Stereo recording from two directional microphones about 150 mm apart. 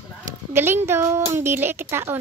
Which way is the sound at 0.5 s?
15° right (ahead or behind).